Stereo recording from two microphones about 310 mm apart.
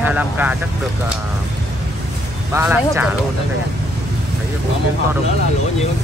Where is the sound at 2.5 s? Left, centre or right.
Centre.